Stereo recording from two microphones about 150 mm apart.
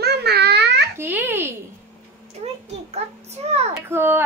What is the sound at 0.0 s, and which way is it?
Babbling, 90° right.